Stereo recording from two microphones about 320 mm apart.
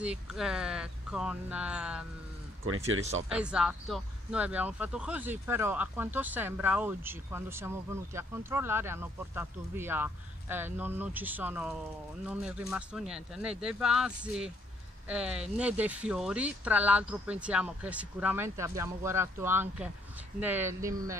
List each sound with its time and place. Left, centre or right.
0.0 s speech: centre
3.3 s speech: centre